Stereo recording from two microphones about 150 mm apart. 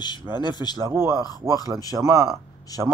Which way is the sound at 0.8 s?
15° right (ahead or behind).